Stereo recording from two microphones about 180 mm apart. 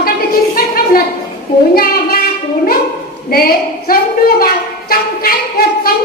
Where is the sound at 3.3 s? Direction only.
55° left (ahead or behind).